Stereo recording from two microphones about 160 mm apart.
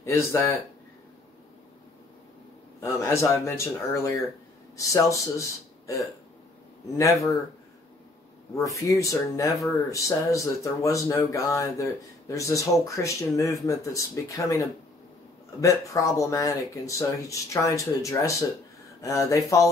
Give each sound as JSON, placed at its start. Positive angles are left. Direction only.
{"t": 0.0, "sound": "speech", "side_deg": 15}
{"t": 2.8, "sound": "speech", "side_deg": 15}
{"t": 7.0, "sound": "speech", "side_deg": 20}
{"t": 8.5, "sound": "speech", "side_deg": 20}